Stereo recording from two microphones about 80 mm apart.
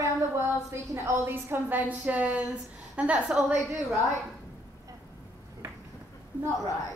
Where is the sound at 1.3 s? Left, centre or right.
Right.